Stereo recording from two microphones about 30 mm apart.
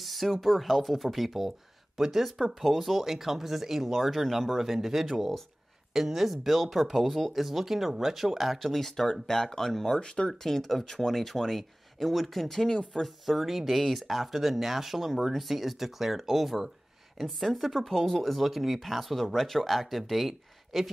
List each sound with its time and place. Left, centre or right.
0.0 s speech: centre
5.9 s speech: centre
8.5 s speech: centre
9.9 s speech: left
10.3 s speech: centre
12.5 s speech: centre
13.0 s speech: centre